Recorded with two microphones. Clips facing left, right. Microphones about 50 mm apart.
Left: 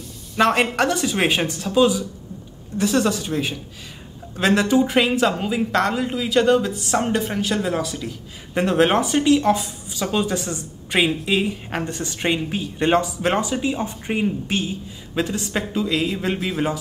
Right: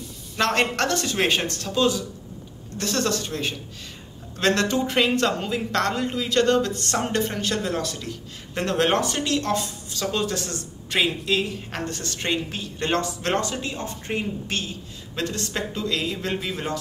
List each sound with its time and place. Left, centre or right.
0.4 s speech: centre